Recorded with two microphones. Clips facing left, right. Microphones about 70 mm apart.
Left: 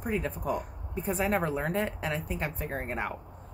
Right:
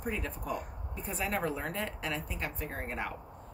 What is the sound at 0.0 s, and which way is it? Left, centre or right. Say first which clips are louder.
Speech: left 5 dB; left.